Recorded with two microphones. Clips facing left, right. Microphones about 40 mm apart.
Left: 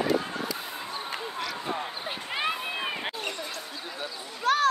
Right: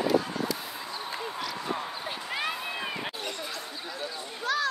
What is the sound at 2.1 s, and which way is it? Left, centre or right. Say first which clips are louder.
Run: left 3 dB; left.